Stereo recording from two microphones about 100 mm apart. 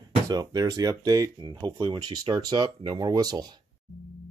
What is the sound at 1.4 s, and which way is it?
Speech, 50° right (ahead or behind).